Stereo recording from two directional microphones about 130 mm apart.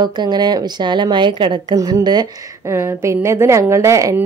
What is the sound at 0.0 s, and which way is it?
A woman's voice, 35° right (ahead or behind).